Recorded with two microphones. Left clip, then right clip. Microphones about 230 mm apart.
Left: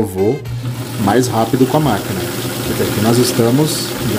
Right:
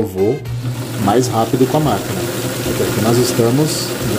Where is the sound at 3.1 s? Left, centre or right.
Centre.